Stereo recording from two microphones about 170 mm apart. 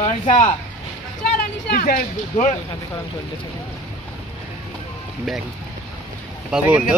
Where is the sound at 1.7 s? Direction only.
55° left (ahead or behind).